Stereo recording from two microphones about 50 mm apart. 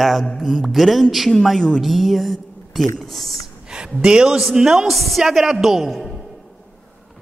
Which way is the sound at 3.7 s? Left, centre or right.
Centre.